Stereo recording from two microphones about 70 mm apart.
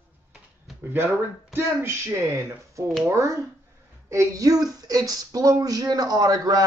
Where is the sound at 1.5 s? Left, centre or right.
Right.